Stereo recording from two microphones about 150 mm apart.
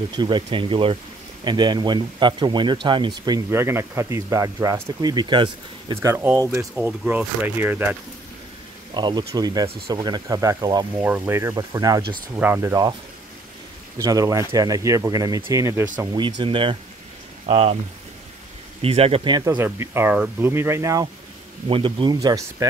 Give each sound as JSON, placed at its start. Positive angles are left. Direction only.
{"t": 0.1, "sound": "speech", "side_deg": -30}
{"t": 5.9, "sound": "speech", "side_deg": -15}
{"t": 8.9, "sound": "speech", "side_deg": -30}
{"t": 11.0, "sound": "speech", "side_deg": -10}
{"t": 12.4, "sound": "speech", "side_deg": -15}
{"t": 13.9, "sound": "speech", "side_deg": -20}
{"t": 16.1, "sound": "speech", "side_deg": -30}
{"t": 18.8, "sound": "speech", "side_deg": -40}
{"t": 19.4, "sound": "speech", "side_deg": -20}
{"t": 21.6, "sound": "speech", "side_deg": -35}